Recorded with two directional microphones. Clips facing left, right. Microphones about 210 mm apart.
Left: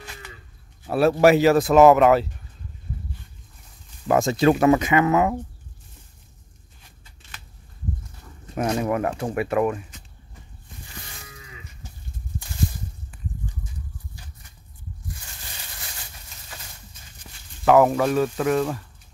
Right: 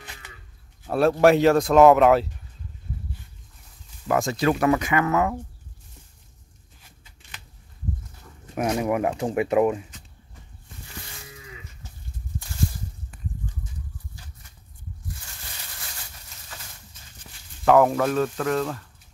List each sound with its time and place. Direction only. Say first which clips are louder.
0.8 s speech: left 1 dB; 5° left (ahead or behind)
4.1 s speech: left 4 dB; 25° left (ahead or behind)
8.5 s speech: even; 15° right (ahead or behind)
17.6 s speech: left 1 dB; 5° left (ahead or behind)